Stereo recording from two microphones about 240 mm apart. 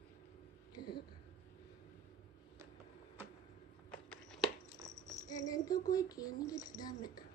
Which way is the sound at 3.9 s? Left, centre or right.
Centre.